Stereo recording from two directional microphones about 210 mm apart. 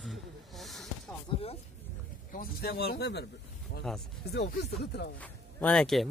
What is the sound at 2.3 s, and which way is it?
Speech, 50° left (ahead or behind).